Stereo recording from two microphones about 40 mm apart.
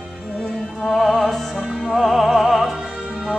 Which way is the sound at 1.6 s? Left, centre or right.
Centre.